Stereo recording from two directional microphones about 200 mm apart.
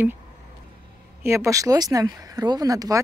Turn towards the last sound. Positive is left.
turn(degrees=-15)  # may be behind; listen again after turning